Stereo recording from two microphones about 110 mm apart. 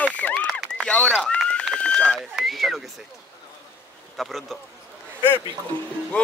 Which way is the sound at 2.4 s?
Centre (ahead or behind).